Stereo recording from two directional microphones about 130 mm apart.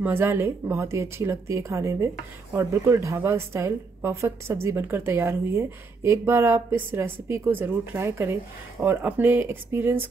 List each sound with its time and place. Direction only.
0.0 s a woman's voice: 15° right (ahead or behind)